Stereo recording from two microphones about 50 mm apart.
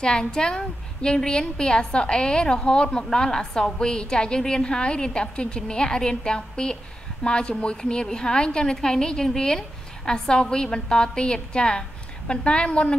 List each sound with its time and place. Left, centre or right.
0.0 s a woman's voice: centre